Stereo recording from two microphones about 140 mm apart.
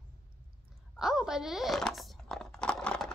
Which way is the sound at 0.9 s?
5° right (ahead or behind).